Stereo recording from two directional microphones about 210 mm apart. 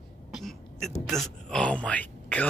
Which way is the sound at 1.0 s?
Centre (ahead or behind).